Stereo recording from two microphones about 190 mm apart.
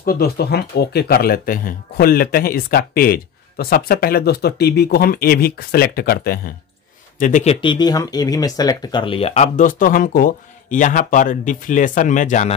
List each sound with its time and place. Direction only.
0.0 s speech: 50° left (ahead or behind)
7.6 s speech: 20° left (ahead or behind); by 12.5 s 40° left (ahead or behind)